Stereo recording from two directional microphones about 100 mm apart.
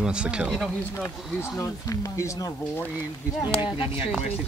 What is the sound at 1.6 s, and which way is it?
Speech, 35° left (ahead or behind).